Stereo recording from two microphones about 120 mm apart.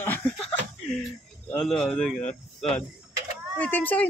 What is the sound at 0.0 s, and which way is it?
Chuckle, 15° left (ahead or behind).